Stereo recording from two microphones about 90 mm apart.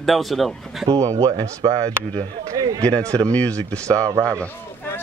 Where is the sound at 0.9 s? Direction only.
40° right (ahead or behind).